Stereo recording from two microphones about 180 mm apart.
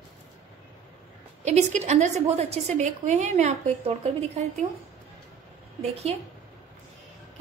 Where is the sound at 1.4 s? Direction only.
40° right (ahead or behind).